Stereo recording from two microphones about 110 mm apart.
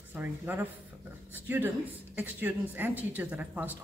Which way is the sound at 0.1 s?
15° right (ahead or behind).